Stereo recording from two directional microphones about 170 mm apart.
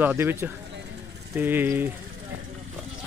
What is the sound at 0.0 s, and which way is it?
Speech, 10° right (ahead or behind).